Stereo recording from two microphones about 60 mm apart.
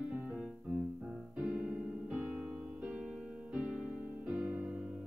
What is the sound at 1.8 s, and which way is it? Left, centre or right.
Music, right.